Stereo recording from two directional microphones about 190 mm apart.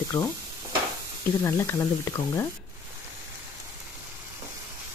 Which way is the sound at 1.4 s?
15° left (ahead or behind).